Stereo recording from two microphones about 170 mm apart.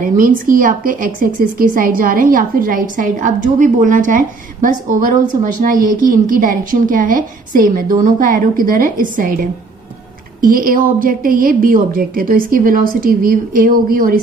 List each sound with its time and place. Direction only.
0.0 s a woman's voice: 55° right (ahead or behind)
10.4 s a woman's voice: 55° right (ahead or behind)